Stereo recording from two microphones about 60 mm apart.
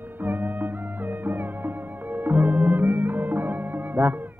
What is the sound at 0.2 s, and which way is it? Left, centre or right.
Music, right.